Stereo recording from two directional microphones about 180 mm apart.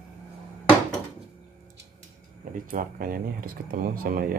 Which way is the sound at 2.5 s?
50° right (ahead or behind).